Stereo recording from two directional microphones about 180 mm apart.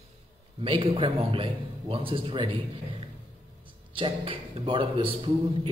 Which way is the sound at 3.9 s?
30° right (ahead or behind).